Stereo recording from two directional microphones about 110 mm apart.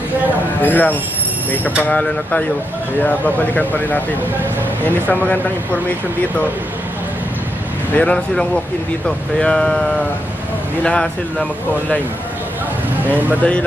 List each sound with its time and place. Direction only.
0.6 s speech: 15° left (ahead or behind)
7.9 s speech: 10° left (ahead or behind)
13.1 s speech: 15° right (ahead or behind)
13.4 s speech: 10° left (ahead or behind)